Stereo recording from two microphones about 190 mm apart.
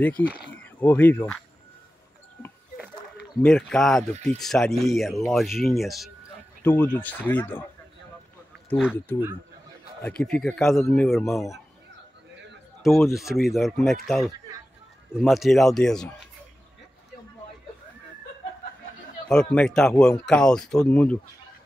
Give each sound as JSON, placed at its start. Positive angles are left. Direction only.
{"t": 0.2, "sound": "speech", "side_deg": -5}
{"t": 0.5, "sound": "speech", "side_deg": 10}
{"t": 3.4, "sound": "speech", "side_deg": 5}
{"t": 4.1, "sound": "speech", "side_deg": -35}
{"t": 4.4, "sound": "speech", "side_deg": 0}
{"t": 8.6, "sound": "speech", "side_deg": 0}
{"t": 10.0, "sound": "speech", "side_deg": 5}
{"t": 12.8, "sound": "speech", "side_deg": 0}
{"t": 19.2, "sound": "speech", "side_deg": 5}